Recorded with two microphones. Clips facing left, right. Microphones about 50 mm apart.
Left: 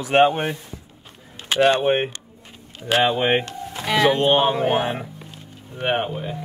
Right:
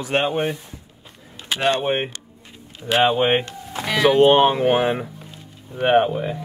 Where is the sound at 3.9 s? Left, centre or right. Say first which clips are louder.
Even; centre.